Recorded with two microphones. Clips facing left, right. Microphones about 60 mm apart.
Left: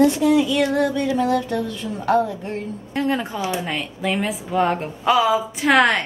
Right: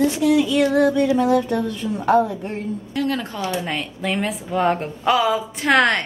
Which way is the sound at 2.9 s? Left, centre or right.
Left.